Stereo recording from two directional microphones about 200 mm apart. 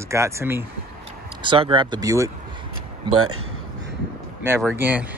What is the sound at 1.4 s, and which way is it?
Speech, 25° right (ahead or behind).